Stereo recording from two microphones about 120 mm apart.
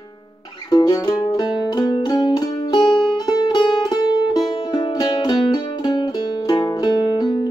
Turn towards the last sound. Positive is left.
turn(degrees=35)  # may be behind; listen again after turning